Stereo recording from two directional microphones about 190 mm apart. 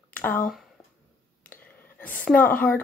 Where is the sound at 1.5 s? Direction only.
10° left (ahead or behind).